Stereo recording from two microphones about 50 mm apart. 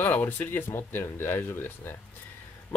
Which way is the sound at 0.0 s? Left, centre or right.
Left.